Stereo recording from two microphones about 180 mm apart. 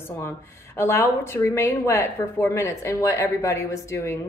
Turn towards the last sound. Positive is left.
turn(degrees=15)  # may be behind; listen again after turning